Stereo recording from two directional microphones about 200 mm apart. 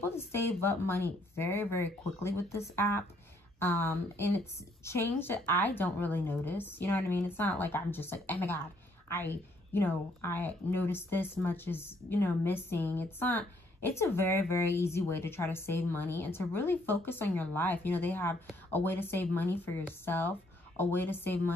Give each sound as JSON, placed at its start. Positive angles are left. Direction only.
{"t": 0.0, "sound": "a woman's voice", "side_deg": 10}